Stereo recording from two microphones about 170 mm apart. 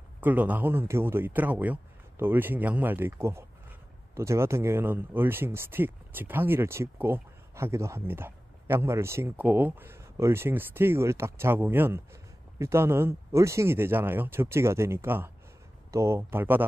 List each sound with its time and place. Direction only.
0.2 s speech: 10° right (ahead or behind)